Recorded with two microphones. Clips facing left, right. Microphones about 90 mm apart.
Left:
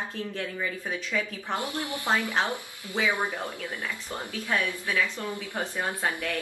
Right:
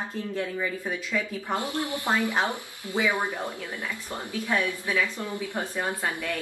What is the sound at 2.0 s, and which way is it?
Speech, 20° right (ahead or behind).